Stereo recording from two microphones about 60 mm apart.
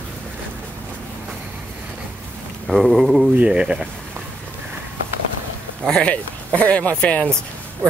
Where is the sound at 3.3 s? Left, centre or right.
Centre.